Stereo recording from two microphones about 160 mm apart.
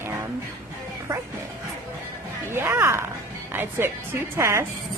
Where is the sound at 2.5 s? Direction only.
15° right (ahead or behind).